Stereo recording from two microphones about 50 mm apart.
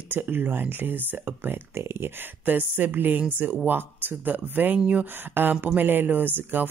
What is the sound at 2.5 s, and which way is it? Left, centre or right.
Speech, right.